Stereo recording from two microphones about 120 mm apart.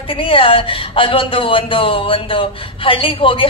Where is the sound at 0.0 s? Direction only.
50° left (ahead or behind).